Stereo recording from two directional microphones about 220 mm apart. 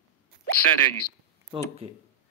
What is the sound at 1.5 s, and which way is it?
Speech, 20° right (ahead or behind).